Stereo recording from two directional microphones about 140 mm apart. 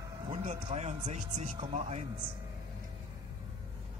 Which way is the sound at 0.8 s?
55° right (ahead or behind).